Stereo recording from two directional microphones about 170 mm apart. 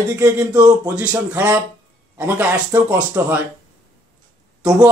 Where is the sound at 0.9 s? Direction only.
5° right (ahead or behind).